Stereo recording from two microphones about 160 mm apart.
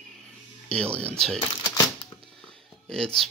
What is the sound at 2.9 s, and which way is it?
Speech, 5° left (ahead or behind).